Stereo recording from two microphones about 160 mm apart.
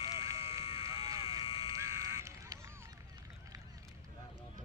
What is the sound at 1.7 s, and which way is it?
Fire alarm, 15° right (ahead or behind).